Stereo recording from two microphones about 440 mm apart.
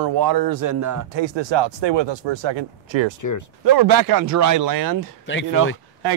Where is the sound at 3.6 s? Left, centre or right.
Right.